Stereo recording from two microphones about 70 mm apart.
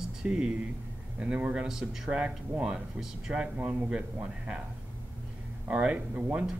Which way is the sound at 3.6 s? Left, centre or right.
Right.